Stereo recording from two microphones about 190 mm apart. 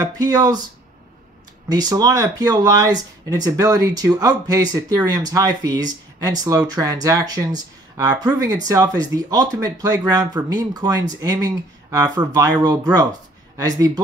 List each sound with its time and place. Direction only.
0.0 s speech: 20° right (ahead or behind)
1.7 s speech: 20° right (ahead or behind)